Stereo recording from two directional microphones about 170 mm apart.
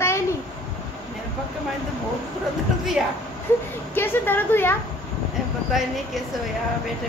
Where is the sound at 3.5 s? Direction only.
15° left (ahead or behind).